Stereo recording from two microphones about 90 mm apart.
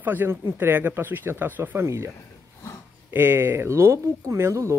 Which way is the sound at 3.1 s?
25° right (ahead or behind).